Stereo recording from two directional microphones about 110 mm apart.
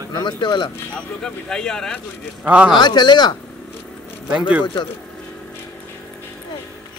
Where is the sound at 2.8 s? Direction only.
40° left (ahead or behind).